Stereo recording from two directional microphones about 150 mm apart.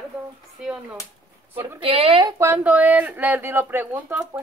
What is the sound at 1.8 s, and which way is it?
Speech, 40° right (ahead or behind).